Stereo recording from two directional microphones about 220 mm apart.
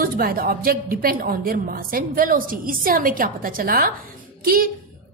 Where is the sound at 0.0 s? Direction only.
40° right (ahead or behind).